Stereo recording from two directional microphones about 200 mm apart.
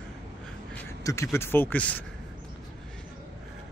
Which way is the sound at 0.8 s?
15° left (ahead or behind).